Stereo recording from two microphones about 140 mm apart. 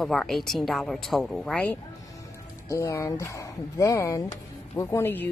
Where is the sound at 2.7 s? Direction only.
20° left (ahead or behind).